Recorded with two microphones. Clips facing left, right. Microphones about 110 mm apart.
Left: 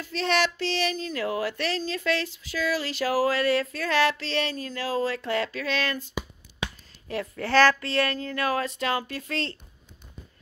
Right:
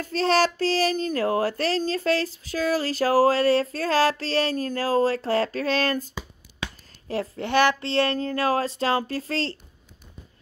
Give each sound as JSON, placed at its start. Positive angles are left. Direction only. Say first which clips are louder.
{"t": 0.0, "sound": "a child's voice", "louder": "right 4 dB", "side_deg": -40}
{"t": 7.1, "sound": "a child's voice", "louder": "right 3 dB", "side_deg": -30}
{"t": 7.4, "sound": "speech", "louder": "left 1 dB", "side_deg": -20}
{"t": 7.9, "sound": "a child's voice", "louder": "right 4 dB", "side_deg": -30}